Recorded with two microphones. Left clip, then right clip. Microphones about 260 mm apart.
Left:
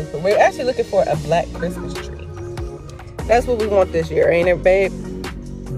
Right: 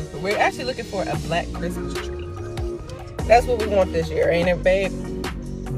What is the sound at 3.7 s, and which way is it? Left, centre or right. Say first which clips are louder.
Speech: left 5 dB; left.